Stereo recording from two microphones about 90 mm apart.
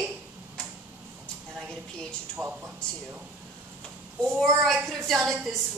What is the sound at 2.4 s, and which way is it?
Speech, 40° right (ahead or behind).